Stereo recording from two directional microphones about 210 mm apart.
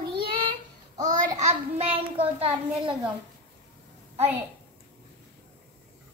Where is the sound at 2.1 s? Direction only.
25° right (ahead or behind).